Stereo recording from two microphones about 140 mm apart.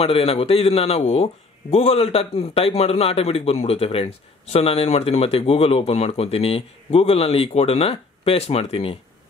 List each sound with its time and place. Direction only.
0.0 s a man's voice: 45° left (ahead or behind)